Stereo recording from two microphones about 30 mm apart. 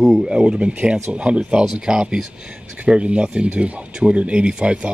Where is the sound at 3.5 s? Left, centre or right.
Right.